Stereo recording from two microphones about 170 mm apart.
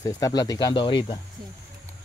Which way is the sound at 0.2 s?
20° left (ahead or behind).